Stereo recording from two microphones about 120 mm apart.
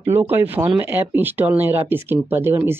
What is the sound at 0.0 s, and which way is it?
Speech, 20° right (ahead or behind).